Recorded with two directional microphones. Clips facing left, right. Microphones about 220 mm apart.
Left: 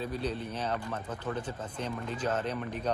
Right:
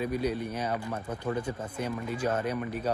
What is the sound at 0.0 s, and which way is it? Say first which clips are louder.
Speech: right 4 dB; 10° right (ahead or behind).